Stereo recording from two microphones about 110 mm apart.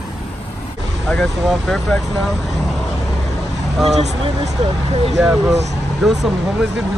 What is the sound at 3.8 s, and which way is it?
Speech, 85° right.